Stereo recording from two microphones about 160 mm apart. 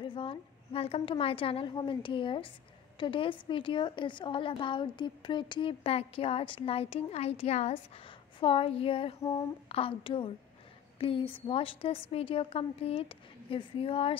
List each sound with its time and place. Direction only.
0.0 s a woman's voice: 35° left (ahead or behind)
9.2 s speech: 20° left (ahead or behind)
9.7 s a woman's voice: 35° left (ahead or behind)